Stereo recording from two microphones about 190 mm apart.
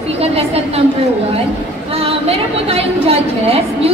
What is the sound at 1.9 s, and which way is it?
A woman's voice, 30° right (ahead or behind).